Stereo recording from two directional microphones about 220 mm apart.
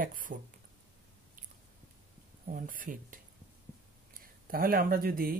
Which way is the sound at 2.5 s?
40° right (ahead or behind).